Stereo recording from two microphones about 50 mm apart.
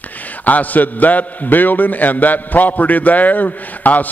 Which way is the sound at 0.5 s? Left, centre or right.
Left.